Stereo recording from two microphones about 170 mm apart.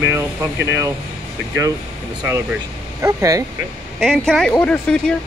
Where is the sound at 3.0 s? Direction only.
20° right (ahead or behind).